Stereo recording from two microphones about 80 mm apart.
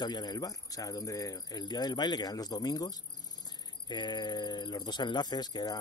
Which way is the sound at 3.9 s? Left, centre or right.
Left.